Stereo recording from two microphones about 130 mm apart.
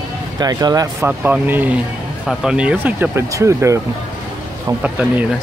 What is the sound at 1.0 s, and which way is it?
Speech, 15° right (ahead or behind).